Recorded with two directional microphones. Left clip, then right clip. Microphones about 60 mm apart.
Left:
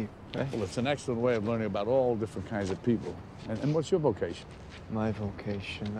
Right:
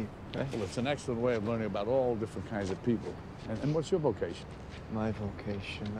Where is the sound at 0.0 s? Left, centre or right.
Right.